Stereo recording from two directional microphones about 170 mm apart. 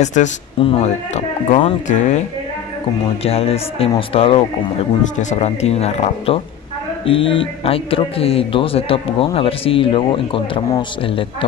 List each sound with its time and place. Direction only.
0.0 s a man's voice: 45° left (ahead or behind)
1.9 s speech: 45° left (ahead or behind)
3.3 s a man's voice: 35° left (ahead or behind)